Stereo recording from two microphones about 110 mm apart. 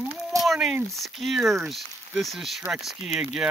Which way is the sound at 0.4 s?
Centre (ahead or behind).